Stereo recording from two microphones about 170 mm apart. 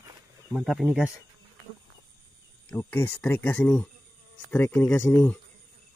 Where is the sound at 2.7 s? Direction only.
10° left (ahead or behind).